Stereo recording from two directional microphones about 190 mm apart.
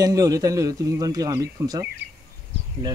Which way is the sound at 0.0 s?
20° right (ahead or behind).